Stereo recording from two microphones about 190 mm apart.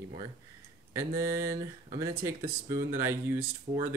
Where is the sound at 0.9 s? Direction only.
15° right (ahead or behind).